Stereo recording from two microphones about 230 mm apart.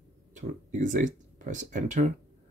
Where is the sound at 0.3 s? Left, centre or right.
Right.